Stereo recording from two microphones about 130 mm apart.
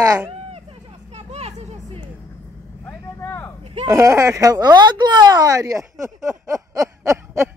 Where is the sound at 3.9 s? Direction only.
25° right (ahead or behind).